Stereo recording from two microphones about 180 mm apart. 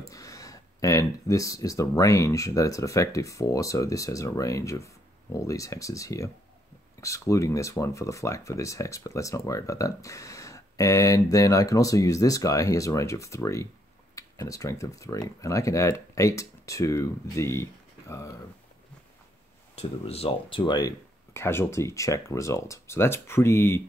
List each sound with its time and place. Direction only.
0.1 s speech: 20° left (ahead or behind)
19.7 s speech: 35° left (ahead or behind); by 23.8 s 15° left (ahead or behind)